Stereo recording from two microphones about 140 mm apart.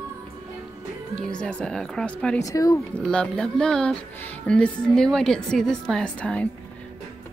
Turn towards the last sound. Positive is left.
turn(degrees=10)  # may be behind; listen again after turning